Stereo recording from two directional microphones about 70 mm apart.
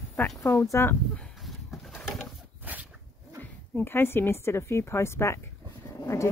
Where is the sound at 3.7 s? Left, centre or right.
Left.